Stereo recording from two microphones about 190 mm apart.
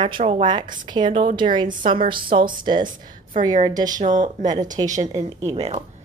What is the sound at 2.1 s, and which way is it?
Speech, 50° right (ahead or behind).